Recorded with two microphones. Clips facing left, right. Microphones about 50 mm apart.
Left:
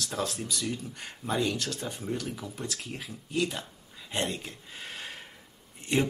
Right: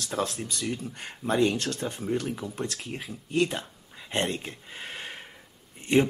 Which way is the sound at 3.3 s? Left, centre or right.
Right.